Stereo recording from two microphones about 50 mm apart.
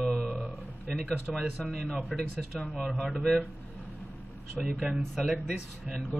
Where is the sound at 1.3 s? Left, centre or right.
Centre.